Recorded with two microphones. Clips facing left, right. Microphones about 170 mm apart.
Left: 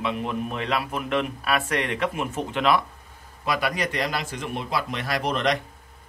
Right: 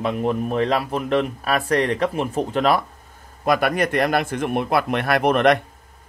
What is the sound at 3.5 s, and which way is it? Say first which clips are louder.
A man's voice: right 7 dB; 55° right (ahead or behind).